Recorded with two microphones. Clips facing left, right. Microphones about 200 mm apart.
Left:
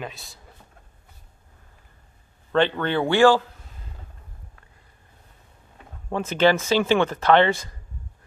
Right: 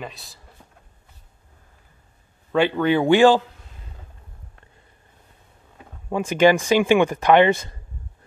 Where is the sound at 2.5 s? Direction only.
10° right (ahead or behind).